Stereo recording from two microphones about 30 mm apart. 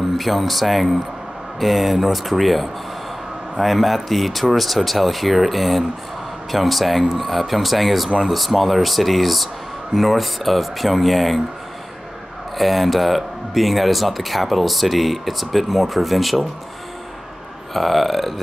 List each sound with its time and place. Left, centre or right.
0.2 s speech: centre
12.5 s speech: centre
17.7 s speech: centre